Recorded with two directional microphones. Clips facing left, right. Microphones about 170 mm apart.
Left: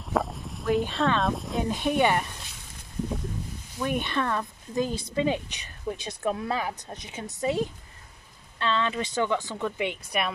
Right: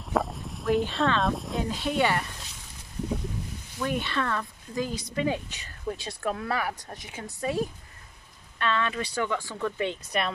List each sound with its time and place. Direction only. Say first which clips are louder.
0.0 s a sound: even; centre (ahead or behind)
1.7 s speech: left 3 dB; 20° left (ahead or behind)
3.8 s speech: left 1 dB; 15° left (ahead or behind)